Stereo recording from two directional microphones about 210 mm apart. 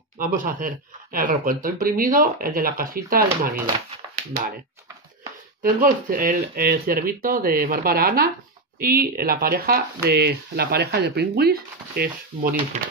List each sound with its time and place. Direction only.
0.2 s speech: 40° right (ahead or behind)
5.6 s speech: 40° right (ahead or behind)
12.7 s speech: 35° right (ahead or behind)